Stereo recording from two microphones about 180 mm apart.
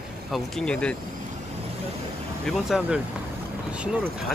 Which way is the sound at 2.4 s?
Centre (ahead or behind).